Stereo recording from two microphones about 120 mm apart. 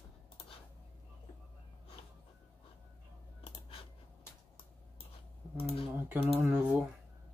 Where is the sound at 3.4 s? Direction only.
50° left (ahead or behind).